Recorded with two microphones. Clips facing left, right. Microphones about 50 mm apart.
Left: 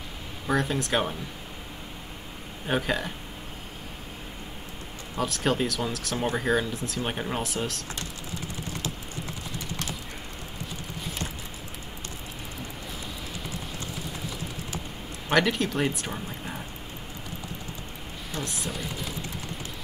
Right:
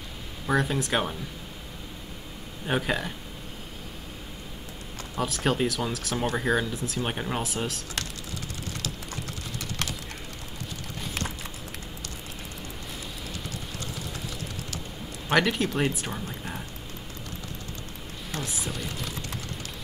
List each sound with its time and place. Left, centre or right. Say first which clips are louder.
0.5 s speech: even; centre
2.6 s speech: even; centre
5.1 s speech: even; centre
9.1 s clip-clop: even; right
15.3 s speech: even; centre
18.4 s speech: left 1 dB; centre